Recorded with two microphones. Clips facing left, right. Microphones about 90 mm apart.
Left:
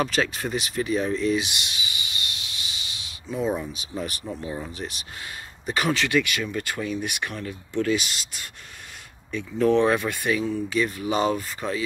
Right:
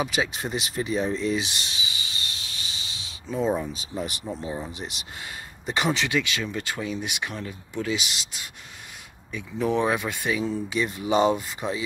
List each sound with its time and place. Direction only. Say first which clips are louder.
0.0 s speech: left 2 dB; 10° right (ahead or behind)
0.3 s a sound: left 2 dB; 20° right (ahead or behind)
3.3 s speech: right 1 dB; 30° right (ahead or behind)
3.9 s speech: left 1 dB; 20° right (ahead or behind)